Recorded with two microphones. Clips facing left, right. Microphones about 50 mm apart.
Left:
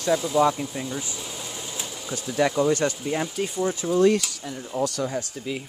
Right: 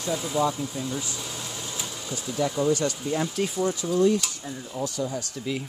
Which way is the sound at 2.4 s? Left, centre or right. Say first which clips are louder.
Left 4 dB; left.